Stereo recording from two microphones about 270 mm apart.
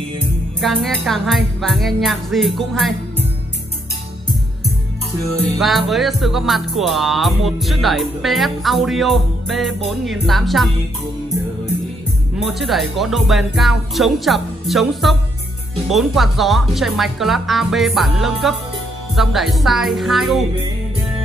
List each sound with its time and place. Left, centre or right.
0.6 s music: centre
5.6 s music: centre
12.4 s music: centre